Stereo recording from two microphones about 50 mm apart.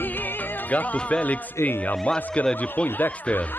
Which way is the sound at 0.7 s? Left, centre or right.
Left.